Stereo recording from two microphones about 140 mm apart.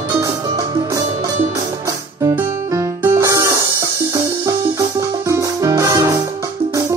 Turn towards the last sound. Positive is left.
turn(degrees=-25)  # may be behind; listen again after turning